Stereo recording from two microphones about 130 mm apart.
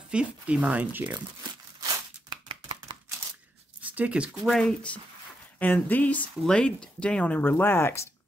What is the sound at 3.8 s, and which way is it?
Speech, 10° right (ahead or behind).